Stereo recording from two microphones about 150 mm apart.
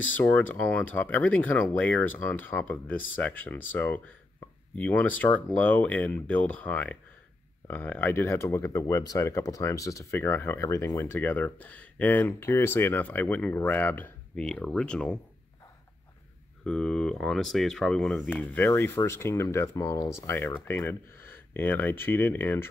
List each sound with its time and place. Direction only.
0.1 s speech: 10° left (ahead or behind)
16.6 s speech: 5° left (ahead or behind)